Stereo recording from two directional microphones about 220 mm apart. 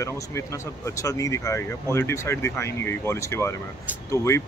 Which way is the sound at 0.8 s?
15° left (ahead or behind).